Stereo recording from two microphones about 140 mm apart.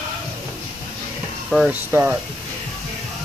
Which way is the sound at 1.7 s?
10° right (ahead or behind).